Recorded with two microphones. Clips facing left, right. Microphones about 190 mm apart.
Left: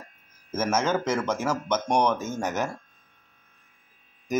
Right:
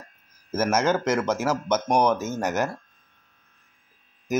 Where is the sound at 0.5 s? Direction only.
10° right (ahead or behind).